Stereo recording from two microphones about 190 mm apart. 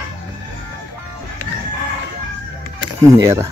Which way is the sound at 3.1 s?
15° right (ahead or behind).